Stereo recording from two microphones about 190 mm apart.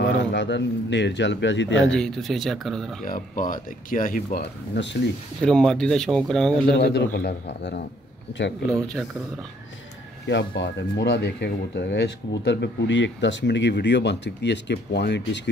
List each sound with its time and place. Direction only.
0.2 s a man's voice: 70° left (ahead or behind)
1.9 s speech: centre (ahead or behind)
3.1 s speech: 45° left (ahead or behind)
4.7 s a man's voice: 70° left (ahead or behind)
5.4 s speech: 5° left (ahead or behind)
7.1 s speech: 50° left (ahead or behind)
7.4 s speech: 65° left (ahead or behind)
8.7 s speech: 5° left (ahead or behind)
10.2 s speech: 70° left (ahead or behind)